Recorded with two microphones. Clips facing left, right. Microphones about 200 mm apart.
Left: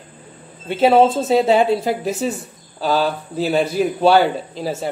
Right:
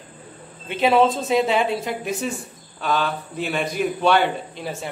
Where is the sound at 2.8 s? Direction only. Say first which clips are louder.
Left 5 dB; 35° left (ahead or behind).